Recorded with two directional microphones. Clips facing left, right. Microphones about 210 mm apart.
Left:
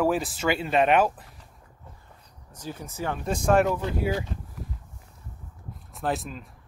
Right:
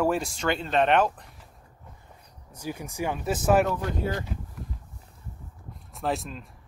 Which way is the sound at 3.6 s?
10° left (ahead or behind).